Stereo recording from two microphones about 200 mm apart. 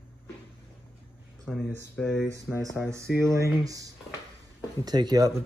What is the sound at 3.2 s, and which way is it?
Speech, 15° right (ahead or behind).